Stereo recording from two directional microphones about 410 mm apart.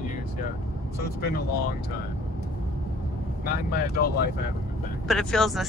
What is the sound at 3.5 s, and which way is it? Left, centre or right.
Speech, left.